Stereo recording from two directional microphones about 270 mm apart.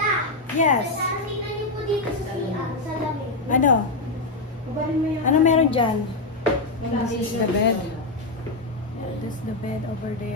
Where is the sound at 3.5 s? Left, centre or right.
Left.